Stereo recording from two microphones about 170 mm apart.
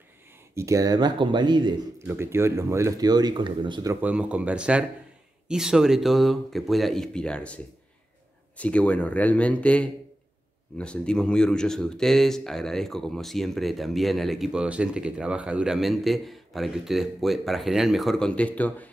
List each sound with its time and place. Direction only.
0.6 s speech: 20° right (ahead or behind)
2.0 s speech: 15° right (ahead or behind)
3.9 s speech: 10° right (ahead or behind); by 18.9 s 10° left (ahead or behind)